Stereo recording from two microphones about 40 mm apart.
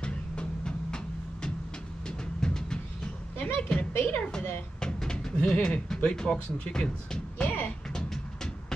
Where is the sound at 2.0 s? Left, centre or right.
Centre.